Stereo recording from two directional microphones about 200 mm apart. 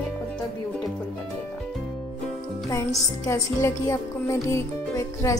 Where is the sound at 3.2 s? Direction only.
15° left (ahead or behind).